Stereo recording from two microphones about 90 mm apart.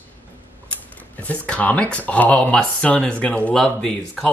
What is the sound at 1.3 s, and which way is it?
Speech, 15° left (ahead or behind).